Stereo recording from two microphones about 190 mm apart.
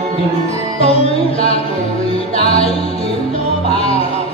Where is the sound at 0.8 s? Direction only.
30° left (ahead or behind).